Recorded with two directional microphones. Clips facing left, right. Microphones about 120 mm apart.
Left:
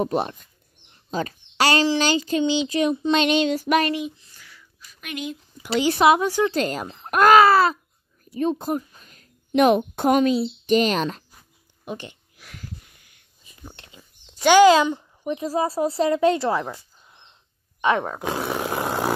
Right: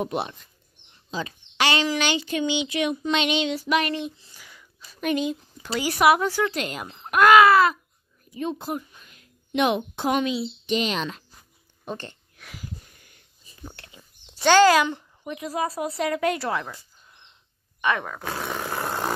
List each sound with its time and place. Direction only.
0.0 s speech: 40° left (ahead or behind)
4.4 s a sound: 20° right (ahead or behind)
5.7 s speech: 25° left (ahead or behind)
6.5 s a woman's voice: 35° left (ahead or behind)
11.8 s speech: 15° left (ahead or behind)
13.0 s sniff: 45° right (ahead or behind)
13.8 s a sound: 20° left (ahead or behind)
14.4 s speech: 15° left (ahead or behind)
14.9 s a sound: 20° left (ahead or behind)
15.3 s speech: 30° left (ahead or behind)
17.8 s speech: 30° left (ahead or behind)
18.4 s roar: 10° left (ahead or behind)